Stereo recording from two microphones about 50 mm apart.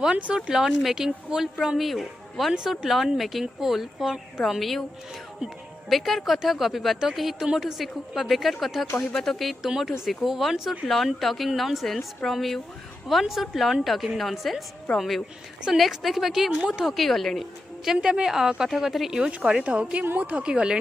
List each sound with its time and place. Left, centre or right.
0.0 s speech: right
0.5 s speech: centre
2.5 s a woman's voice: centre
5.9 s a woman's voice: centre
17.9 s speech: centre
19.6 s speech: right